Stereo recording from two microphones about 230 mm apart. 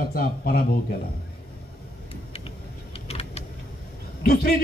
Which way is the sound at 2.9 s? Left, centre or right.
Left.